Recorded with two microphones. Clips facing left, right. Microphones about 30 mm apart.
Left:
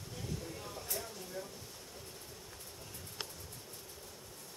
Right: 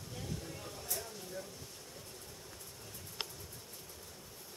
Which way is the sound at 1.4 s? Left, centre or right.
Left.